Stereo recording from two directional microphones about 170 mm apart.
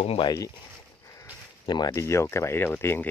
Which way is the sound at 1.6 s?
25° left (ahead or behind).